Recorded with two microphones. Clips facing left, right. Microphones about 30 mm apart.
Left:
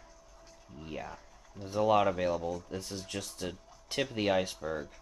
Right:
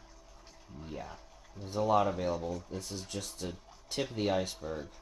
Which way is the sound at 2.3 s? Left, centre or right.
Centre.